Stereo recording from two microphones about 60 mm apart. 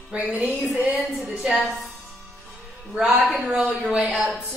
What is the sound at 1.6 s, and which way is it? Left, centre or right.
Speech, centre.